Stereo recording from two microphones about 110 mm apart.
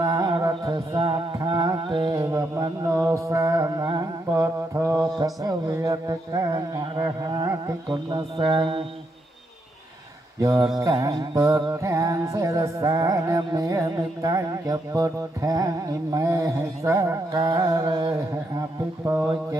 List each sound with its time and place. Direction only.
0.0 s music: 30° right (ahead or behind)
1.4 s carnatic music: 35° right (ahead or behind)
2.1 s mantra: 25° right (ahead or behind)
5.2 s speech: 35° right (ahead or behind); by 8.8 s 50° right (ahead or behind)
10.4 s music: 30° right (ahead or behind)
19.0 s music: 25° right (ahead or behind)